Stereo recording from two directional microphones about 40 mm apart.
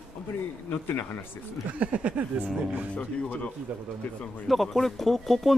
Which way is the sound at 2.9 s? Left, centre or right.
Left.